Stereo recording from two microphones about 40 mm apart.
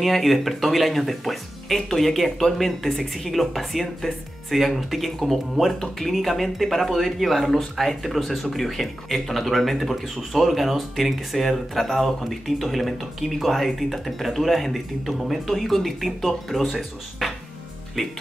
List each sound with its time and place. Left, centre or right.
0.0 s speech: centre